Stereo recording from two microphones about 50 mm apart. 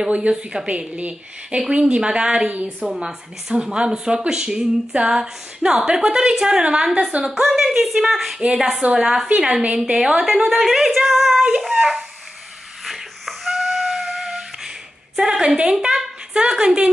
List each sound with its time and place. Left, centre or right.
0.1 s a woman's voice: right
2.0 s female singing: centre
9.9 s a woman's voice: centre
11.6 s female singing: centre
12.8 s music: centre
15.1 s female singing: centre